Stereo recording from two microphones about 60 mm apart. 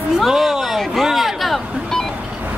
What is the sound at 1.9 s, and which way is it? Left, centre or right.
Vehicle, centre.